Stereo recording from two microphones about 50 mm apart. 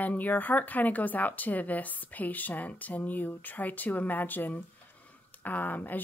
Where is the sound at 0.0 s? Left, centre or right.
Left.